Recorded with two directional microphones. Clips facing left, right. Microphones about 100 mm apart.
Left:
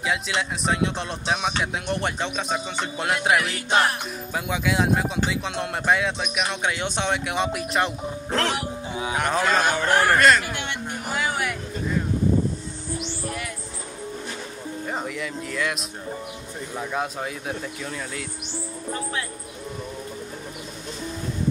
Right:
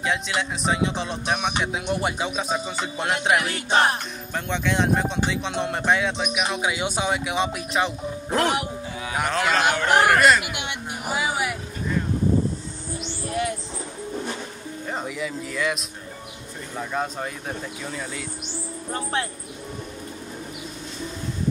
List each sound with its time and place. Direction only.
0.0 s speech: centre (ahead or behind)
3.3 s music: 20° right (ahead or behind)
4.3 s speech: 5° left (ahead or behind)
8.3 s speech: 15° right (ahead or behind)
8.9 s a sound: 20° left (ahead or behind)
9.4 s speech: 15° right (ahead or behind)
10.1 s speech: 5° right (ahead or behind)
10.4 s a sound: 15° right (ahead or behind)
14.9 s speech: centre (ahead or behind)